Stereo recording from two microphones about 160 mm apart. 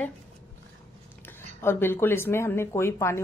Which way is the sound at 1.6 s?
15° left (ahead or behind).